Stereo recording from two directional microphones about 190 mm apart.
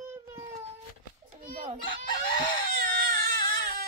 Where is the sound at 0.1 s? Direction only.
15° right (ahead or behind).